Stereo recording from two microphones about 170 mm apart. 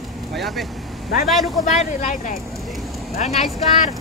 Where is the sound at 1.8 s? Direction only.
45° left (ahead or behind).